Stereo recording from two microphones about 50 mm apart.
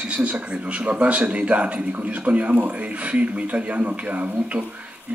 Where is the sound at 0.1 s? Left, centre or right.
Right.